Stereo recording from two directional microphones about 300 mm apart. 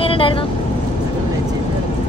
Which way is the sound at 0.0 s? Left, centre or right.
Centre.